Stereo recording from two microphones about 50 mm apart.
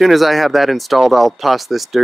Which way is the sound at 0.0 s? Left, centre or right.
Centre.